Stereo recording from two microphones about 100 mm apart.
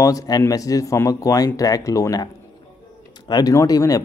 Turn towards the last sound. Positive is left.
turn(degrees=40)  # may be behind; listen again after turning